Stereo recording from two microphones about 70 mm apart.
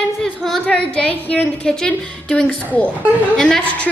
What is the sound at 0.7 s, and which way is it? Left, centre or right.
A woman's voice, centre.